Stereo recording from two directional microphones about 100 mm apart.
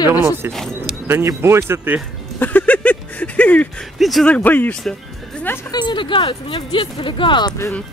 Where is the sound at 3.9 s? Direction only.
Centre (ahead or behind).